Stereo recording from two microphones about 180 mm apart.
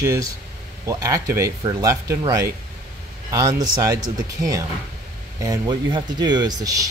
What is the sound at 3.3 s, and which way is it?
Speech, 20° right (ahead or behind).